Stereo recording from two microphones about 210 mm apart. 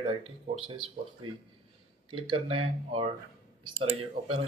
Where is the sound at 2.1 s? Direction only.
25° right (ahead or behind).